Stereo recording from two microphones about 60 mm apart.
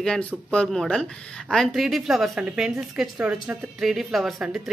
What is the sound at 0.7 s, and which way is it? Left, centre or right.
A woman's voice, centre.